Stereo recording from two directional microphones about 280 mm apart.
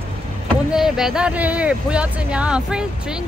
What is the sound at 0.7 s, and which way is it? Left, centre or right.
Speech, centre.